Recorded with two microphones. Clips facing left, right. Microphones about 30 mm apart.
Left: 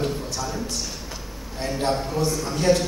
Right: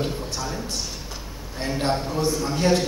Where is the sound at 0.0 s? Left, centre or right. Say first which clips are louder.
Left 1 dB; centre.